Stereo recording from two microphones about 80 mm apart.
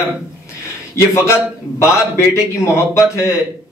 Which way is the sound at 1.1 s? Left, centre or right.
Left.